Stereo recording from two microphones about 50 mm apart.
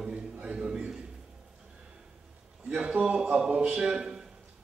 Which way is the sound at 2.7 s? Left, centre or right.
Centre.